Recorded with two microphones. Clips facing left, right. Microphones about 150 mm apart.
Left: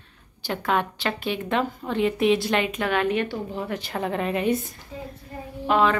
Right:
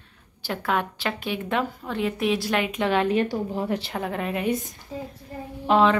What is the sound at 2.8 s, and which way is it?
Speech, 30° right (ahead or behind).